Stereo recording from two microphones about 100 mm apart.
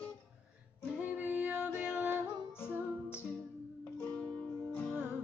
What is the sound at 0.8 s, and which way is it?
Music, 15° right (ahead or behind).